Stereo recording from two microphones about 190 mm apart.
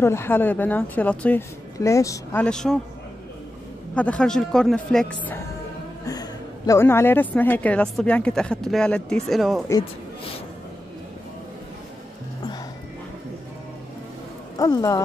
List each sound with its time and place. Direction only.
0.0 s speech: 15° left (ahead or behind)
2.4 s a man's voice: 5° left (ahead or behind)
3.9 s a man's voice: 5° left (ahead or behind)
6.0 s speech: 20° left (ahead or behind); by 9.7 s centre (ahead or behind)
14.6 s speech: 15° left (ahead or behind)